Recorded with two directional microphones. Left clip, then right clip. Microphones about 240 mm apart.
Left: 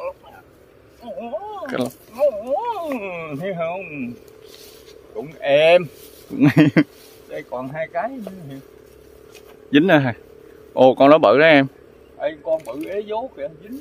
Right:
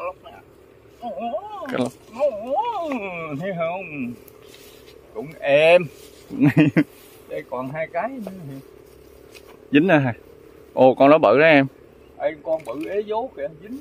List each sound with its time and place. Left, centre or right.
1.6 s a sound: centre
5.1 s speech: centre
6.3 s speech: centre
7.2 s speech: centre
9.7 s a man's voice: centre
12.2 s speech: centre